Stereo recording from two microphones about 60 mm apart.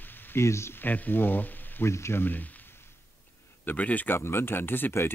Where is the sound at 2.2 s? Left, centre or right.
Left.